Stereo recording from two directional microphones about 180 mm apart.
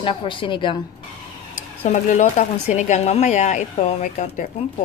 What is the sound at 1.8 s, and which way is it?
Speech, 40° left (ahead or behind).